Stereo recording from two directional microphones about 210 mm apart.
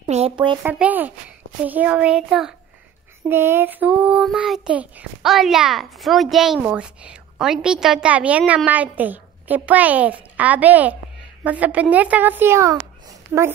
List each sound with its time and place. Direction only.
0.0 s speech: 25° right (ahead or behind)
0.7 s a woman's voice: 10° right (ahead or behind)
1.7 s child singing: 5° right (ahead or behind)
11.4 s a woman's voice: 5° right (ahead or behind)